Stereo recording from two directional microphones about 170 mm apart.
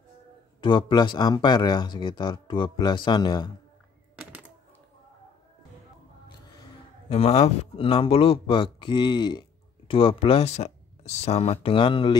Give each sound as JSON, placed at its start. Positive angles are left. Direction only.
{"t": 0.6, "sound": "speech", "side_deg": 25}
{"t": 4.2, "sound": "typewriter", "side_deg": -5}
{"t": 7.1, "sound": "speech", "side_deg": 35}